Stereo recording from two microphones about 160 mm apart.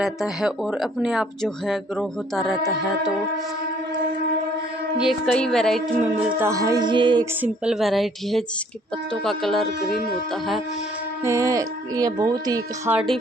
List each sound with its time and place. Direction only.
0.0 s speech: centre (ahead or behind)
4.9 s speech: centre (ahead or behind)
6.1 s speech: 15° right (ahead or behind)
7.4 s speech: 5° right (ahead or behind)
11.2 s speech: 20° right (ahead or behind)